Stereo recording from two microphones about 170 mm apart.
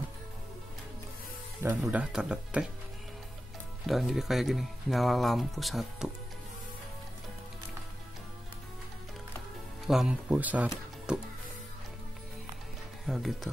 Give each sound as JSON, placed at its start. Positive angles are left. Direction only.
{"t": 1.8, "sound": "speech", "side_deg": -5}
{"t": 3.8, "sound": "speech", "side_deg": 0}
{"t": 9.8, "sound": "speech", "side_deg": -5}
{"t": 13.0, "sound": "speech", "side_deg": 0}